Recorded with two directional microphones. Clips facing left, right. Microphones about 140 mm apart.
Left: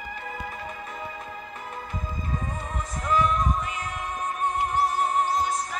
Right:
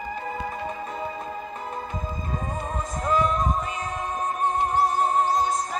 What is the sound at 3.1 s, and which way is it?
Music, 25° right (ahead or behind).